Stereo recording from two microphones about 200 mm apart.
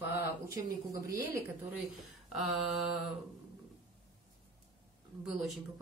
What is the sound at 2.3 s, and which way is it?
Speech, centre (ahead or behind).